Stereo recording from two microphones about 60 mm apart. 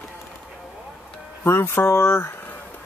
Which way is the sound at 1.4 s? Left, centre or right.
Left.